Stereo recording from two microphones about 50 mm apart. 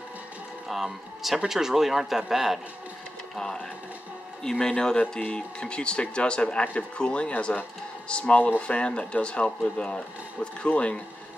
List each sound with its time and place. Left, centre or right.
0.7 s speech: centre
3.3 s a man's voice: centre
8.4 s speech: left
8.6 s speech: left